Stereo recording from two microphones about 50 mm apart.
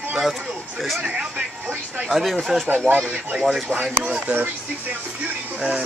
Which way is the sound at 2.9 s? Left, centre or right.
Left.